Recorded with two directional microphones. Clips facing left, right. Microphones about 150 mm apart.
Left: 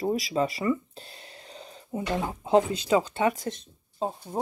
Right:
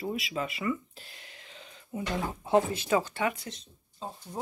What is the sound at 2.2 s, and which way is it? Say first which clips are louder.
Speech: left 3 dB; 20° left (ahead or behind).